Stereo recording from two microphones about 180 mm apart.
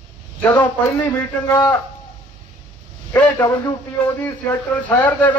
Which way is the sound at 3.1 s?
10° left (ahead or behind).